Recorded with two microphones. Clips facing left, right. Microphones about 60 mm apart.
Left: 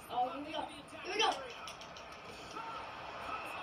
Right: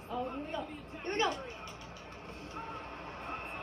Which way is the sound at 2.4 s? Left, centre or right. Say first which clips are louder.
Right 1 dB; right.